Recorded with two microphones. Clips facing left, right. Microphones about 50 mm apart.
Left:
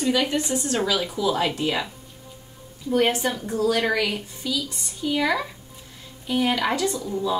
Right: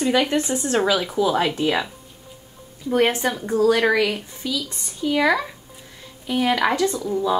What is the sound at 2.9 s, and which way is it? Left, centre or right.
A woman's voice, right.